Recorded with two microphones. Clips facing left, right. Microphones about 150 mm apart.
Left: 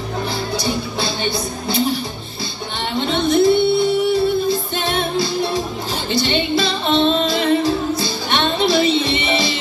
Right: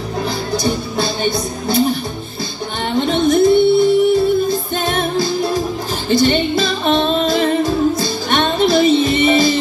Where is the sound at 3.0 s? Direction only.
45° right (ahead or behind).